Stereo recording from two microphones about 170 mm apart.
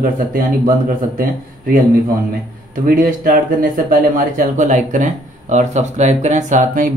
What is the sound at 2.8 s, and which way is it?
Speech, 60° right (ahead or behind).